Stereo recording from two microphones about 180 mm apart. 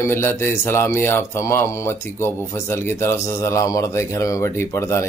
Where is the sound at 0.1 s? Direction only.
15° left (ahead or behind).